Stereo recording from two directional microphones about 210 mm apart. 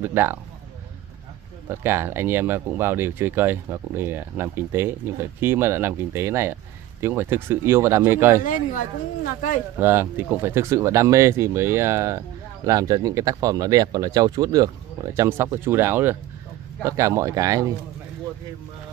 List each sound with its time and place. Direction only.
0.0 s speech: 10° right (ahead or behind)
1.7 s speech: 10° right (ahead or behind)
8.5 s speech: 40° left (ahead or behind)
9.8 s speech: 10° right (ahead or behind)